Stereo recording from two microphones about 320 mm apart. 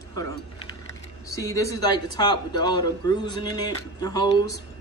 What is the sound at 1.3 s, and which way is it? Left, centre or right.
A man's voice, centre.